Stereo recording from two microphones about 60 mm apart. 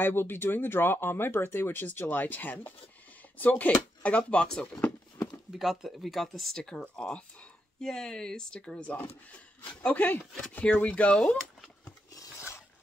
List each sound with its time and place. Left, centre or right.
0.0 s speech: left; by 4.6 s centre
5.5 s speech: centre
9.8 s speech: left